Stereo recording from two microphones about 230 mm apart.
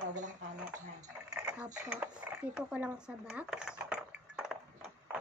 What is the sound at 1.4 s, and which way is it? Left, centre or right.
Cutlery, centre.